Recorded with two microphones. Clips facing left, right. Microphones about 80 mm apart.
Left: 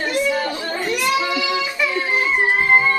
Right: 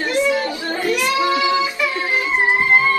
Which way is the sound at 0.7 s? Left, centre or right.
Left.